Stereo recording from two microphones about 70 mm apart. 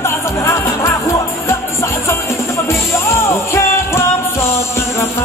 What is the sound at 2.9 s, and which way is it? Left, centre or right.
Music, left.